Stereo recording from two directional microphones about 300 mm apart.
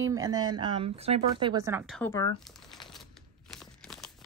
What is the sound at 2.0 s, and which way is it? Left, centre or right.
Speech, centre.